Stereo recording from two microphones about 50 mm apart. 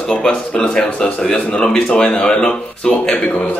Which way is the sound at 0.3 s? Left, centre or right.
Left.